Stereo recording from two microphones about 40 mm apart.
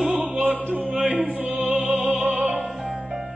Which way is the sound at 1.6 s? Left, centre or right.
Right.